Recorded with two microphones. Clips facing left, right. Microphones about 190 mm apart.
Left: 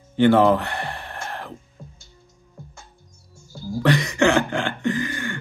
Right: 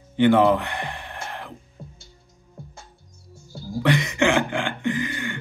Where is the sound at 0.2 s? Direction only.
15° right (ahead or behind).